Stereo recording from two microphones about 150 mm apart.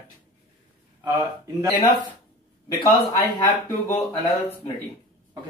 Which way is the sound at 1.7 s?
30° left (ahead or behind).